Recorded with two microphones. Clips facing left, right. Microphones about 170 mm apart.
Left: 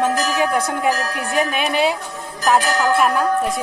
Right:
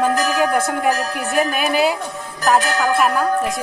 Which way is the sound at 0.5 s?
Centre (ahead or behind).